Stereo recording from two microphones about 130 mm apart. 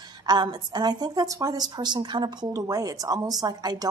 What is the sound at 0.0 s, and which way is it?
A woman's voice, 35° right (ahead or behind).